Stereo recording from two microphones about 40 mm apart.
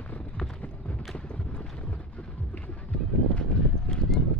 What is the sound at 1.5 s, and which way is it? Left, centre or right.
Boat, left.